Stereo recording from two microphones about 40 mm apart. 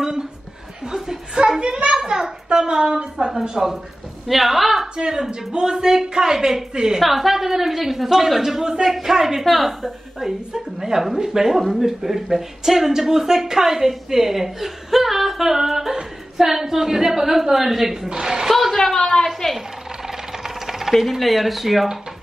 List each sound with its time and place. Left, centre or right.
0.9 s chuckle: centre
1.6 s a sound: right
2.0 s a sound: centre
4.3 s speech: centre
4.9 s speech: centre
7.0 s speech: centre
9.5 s speech: centre
10.2 s speech: centre
18.5 s a sound: centre
20.1 s helicopter: centre
21.0 s speech: centre